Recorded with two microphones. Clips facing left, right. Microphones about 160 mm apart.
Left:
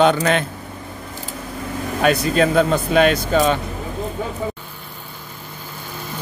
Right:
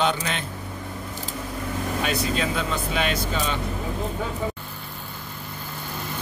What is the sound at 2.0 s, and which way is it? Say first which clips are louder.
A man's voice: left 11 dB; 60° left (ahead or behind).